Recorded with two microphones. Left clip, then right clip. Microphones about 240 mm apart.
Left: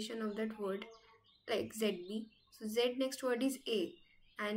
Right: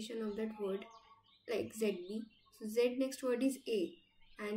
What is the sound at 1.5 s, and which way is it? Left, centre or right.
Speech, centre.